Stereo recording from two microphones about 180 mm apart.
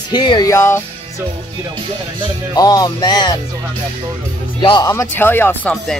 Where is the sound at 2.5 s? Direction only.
20° left (ahead or behind).